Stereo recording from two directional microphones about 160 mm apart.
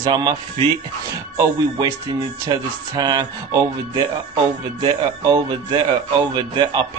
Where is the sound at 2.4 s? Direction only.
25° right (ahead or behind).